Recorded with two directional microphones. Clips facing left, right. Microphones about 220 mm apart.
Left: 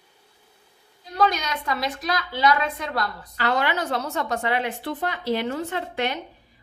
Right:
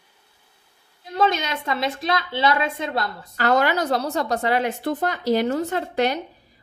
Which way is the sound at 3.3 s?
45° right (ahead or behind).